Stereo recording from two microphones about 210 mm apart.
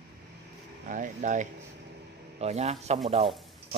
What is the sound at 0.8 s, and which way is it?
Speech, 35° right (ahead or behind).